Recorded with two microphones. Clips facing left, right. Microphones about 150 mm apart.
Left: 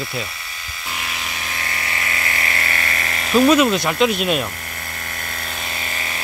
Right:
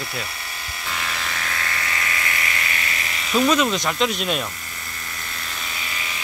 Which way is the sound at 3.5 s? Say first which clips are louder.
Left 5 dB; 10° left (ahead or behind).